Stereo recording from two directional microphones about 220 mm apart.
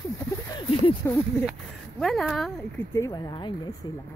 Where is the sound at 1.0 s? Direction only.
10° left (ahead or behind).